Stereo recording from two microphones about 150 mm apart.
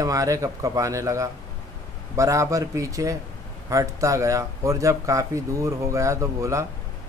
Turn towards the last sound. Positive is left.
turn(degrees=-20)  # may be behind; listen again after turning